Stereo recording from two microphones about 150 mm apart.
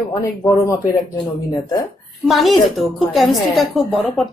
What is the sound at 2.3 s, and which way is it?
A woman's voice, centre (ahead or behind).